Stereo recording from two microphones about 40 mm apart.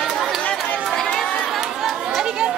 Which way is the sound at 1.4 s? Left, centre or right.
Centre.